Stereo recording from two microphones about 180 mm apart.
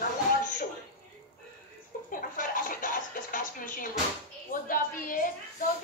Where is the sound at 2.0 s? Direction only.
50° left (ahead or behind).